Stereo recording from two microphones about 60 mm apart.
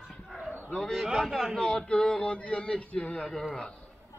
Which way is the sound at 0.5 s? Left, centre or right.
Centre.